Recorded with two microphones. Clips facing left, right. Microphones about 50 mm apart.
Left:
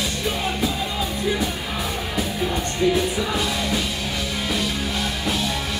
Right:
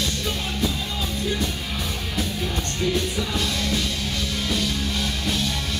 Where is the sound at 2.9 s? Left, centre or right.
Centre.